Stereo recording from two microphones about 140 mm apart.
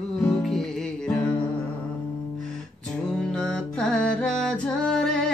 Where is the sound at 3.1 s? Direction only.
5° left (ahead or behind).